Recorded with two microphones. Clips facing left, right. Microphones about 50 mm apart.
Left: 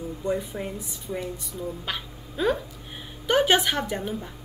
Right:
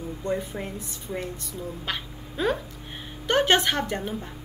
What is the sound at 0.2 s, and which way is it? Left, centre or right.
Speech, right.